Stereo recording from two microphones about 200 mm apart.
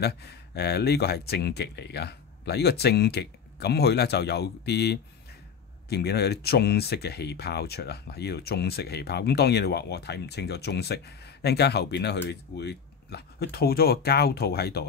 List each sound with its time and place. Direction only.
0.0 s speech: 55° left (ahead or behind)